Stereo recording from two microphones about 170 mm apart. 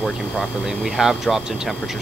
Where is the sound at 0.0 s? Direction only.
Centre (ahead or behind).